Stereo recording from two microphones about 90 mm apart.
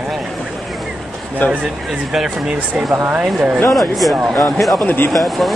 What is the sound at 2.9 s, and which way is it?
Speech, 30° right (ahead or behind).